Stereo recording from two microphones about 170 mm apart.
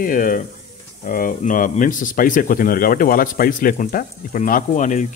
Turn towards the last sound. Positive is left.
turn(degrees=45)  # may be behind; listen again after turning